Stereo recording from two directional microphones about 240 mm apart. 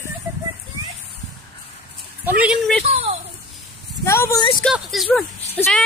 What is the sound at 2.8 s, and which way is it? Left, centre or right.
Speech, right.